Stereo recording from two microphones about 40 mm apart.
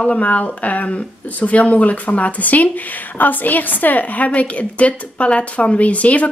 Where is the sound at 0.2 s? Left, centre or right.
Left.